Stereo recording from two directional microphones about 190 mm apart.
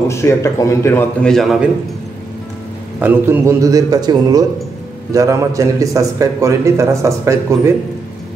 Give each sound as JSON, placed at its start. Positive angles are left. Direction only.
{"t": 0.1, "sound": "a man's voice", "side_deg": 15}
{"t": 3.0, "sound": "a man's voice", "side_deg": -10}